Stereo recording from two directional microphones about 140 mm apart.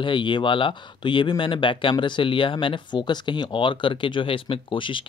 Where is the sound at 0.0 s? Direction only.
35° left (ahead or behind).